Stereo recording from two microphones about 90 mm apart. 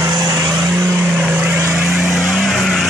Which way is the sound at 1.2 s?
15° right (ahead or behind).